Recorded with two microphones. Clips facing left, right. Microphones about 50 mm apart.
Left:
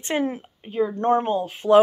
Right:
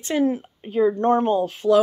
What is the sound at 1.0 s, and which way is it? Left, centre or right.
Speech, left.